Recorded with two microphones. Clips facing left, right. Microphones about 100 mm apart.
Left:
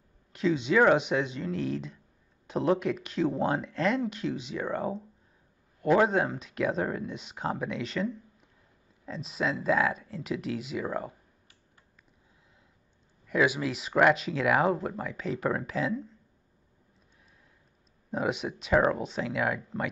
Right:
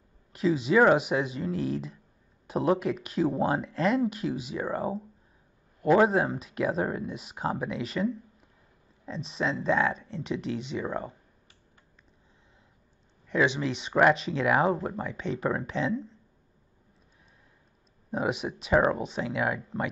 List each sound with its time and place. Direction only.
0.3 s speech: 5° right (ahead or behind)
13.3 s speech: 5° left (ahead or behind)
18.1 s speech: centre (ahead or behind)